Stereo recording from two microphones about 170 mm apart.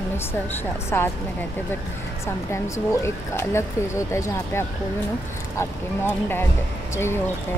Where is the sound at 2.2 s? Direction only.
15° left (ahead or behind).